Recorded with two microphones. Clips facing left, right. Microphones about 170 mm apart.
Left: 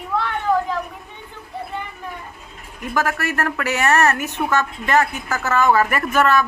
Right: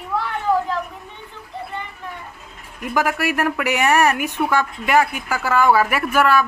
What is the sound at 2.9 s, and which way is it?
A woman's voice, 15° right (ahead or behind).